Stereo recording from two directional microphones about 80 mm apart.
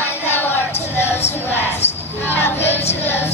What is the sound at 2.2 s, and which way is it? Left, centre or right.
Music, left.